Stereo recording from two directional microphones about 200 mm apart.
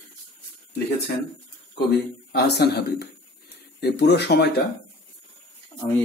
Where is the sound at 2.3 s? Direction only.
55° left (ahead or behind).